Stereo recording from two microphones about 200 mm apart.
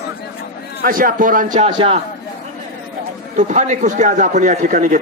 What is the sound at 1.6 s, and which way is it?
Speech, 30° right (ahead or behind).